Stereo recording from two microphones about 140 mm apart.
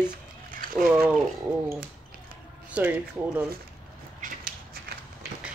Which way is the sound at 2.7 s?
10° right (ahead or behind).